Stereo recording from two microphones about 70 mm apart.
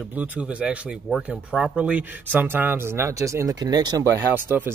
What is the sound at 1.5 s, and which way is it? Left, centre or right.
Speech, centre.